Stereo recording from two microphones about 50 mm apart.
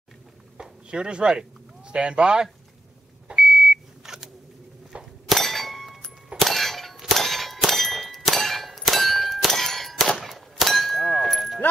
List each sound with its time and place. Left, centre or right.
0.6 s a sound: centre
1.9 s speech: centre
3.3 s beep: centre
4.9 s clang: right
5.3 s clang: centre
10.7 s a sound: centre